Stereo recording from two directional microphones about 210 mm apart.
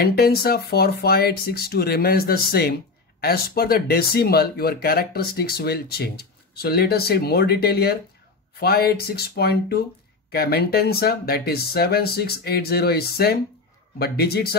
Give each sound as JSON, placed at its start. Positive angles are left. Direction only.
{"t": 0.0, "sound": "speech", "side_deg": 45}